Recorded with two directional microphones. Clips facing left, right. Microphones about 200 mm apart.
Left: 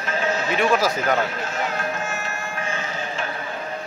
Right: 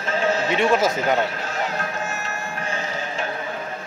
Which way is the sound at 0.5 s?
25° right (ahead or behind).